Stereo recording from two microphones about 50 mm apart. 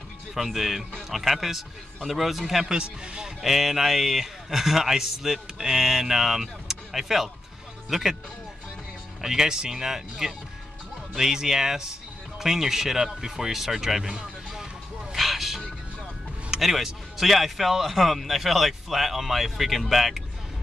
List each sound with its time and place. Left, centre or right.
0.3 s a man's voice: centre
2.6 s speech: centre
3.4 s a man's voice: centre
9.2 s speech: centre
15.1 s music: centre
16.4 s a man's voice: centre